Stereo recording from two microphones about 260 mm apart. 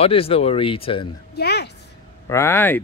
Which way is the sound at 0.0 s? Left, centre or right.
Left.